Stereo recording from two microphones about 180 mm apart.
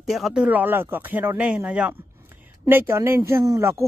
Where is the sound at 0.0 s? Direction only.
Centre (ahead or behind).